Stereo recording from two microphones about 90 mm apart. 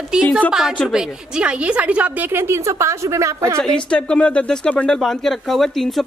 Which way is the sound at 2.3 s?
30° right (ahead or behind).